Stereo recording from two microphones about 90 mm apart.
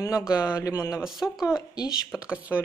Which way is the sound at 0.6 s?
40° left (ahead or behind).